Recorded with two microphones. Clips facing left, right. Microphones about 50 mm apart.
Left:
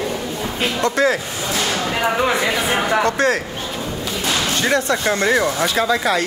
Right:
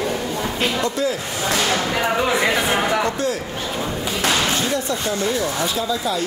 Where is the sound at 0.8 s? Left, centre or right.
Left.